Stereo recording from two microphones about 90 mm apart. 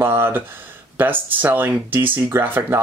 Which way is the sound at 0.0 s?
25° right (ahead or behind).